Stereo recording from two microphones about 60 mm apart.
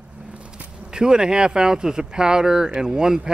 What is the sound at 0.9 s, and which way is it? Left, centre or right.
Speech, centre.